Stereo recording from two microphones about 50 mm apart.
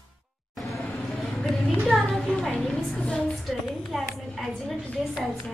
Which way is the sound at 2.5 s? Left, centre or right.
Centre.